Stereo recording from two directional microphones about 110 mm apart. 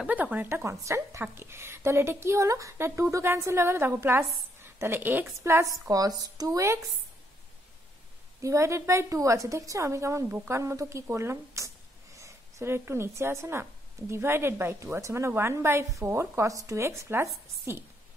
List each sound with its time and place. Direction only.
0.0 s a woman's voice: 15° right (ahead or behind)
8.4 s speech: 25° right (ahead or behind)
10.6 s speech: 30° right (ahead or behind)